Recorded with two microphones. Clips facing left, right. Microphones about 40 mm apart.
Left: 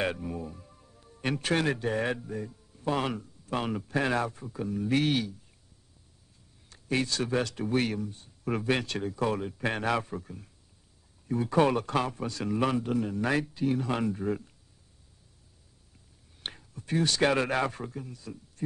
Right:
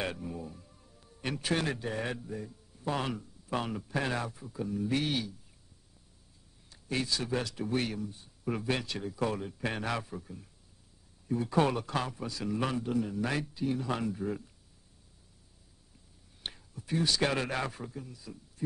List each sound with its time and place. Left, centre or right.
0.0 s music: centre
1.5 s speech: left
4.8 s a man's voice: left
6.9 s a man's voice: left
8.0 s speech: centre
8.5 s a man's voice: left
17.2 s speech: left